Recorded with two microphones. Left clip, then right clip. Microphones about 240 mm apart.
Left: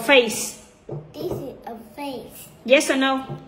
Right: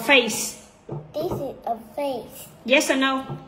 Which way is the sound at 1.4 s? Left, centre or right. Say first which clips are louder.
Right 6 dB; right.